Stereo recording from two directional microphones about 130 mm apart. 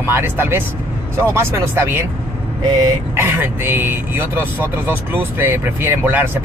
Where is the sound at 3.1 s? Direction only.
15° right (ahead or behind).